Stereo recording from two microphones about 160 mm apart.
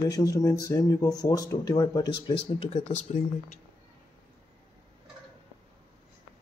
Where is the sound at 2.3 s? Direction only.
40° left (ahead or behind).